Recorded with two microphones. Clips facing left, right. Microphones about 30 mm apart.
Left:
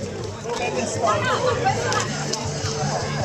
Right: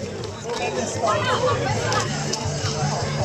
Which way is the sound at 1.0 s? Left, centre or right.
Centre.